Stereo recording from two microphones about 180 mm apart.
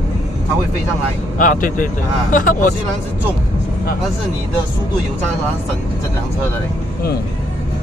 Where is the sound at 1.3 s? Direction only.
45° left (ahead or behind).